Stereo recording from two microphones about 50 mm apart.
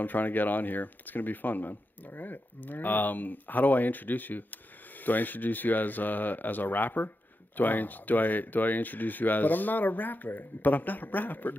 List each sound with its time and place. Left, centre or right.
0.0 s speech: left